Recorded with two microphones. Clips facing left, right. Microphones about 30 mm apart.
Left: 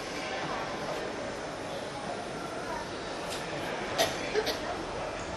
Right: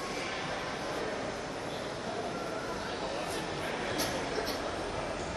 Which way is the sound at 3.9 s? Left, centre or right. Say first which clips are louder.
Left 4 dB; left.